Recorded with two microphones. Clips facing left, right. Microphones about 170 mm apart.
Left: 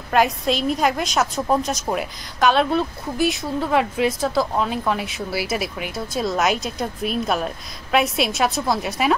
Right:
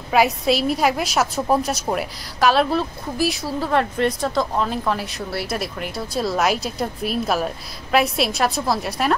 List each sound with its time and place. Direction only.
0.1 s a woman's voice: 5° right (ahead or behind)